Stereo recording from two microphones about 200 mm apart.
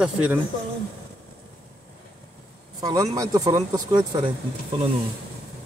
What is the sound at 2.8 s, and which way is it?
Speech, 20° right (ahead or behind).